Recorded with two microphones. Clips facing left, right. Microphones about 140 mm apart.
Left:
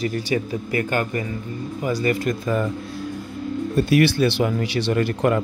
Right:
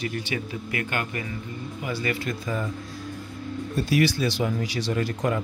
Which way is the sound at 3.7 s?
60° left (ahead or behind).